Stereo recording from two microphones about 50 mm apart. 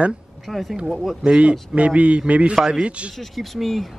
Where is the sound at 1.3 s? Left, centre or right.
Right.